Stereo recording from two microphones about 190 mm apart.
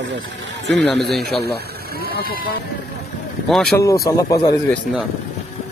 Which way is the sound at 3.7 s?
15° left (ahead or behind).